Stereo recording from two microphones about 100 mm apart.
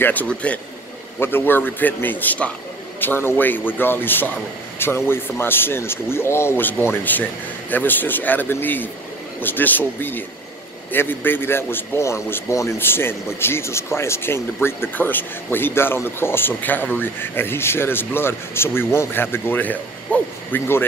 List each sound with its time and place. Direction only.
0.0 s a man's voice: 15° left (ahead or behind)